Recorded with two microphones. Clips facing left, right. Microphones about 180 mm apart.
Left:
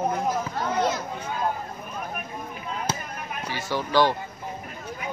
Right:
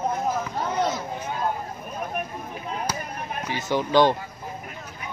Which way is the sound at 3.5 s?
20° right (ahead or behind).